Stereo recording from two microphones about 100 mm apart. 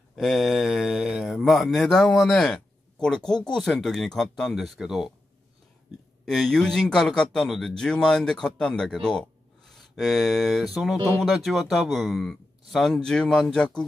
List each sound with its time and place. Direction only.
0.1 s a man's voice: centre (ahead or behind)
6.2 s a man's voice: 5° left (ahead or behind)